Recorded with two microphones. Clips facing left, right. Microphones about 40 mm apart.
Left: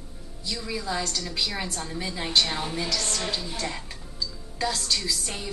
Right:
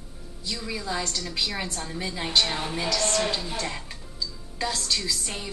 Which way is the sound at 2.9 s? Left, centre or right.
Right.